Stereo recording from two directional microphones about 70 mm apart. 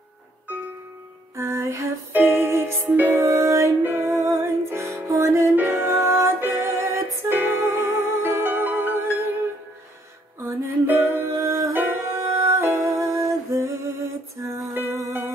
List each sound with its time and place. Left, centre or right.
1.3 s music: right
2.1 s music: right
3.3 s music: right
3.8 s music: right
10.4 s music: right